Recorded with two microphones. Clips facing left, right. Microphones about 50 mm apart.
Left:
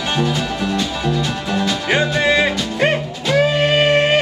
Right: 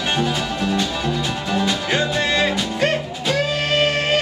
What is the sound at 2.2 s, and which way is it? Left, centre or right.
Music, centre.